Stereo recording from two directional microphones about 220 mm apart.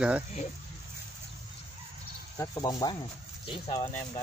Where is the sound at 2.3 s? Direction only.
15° left (ahead or behind).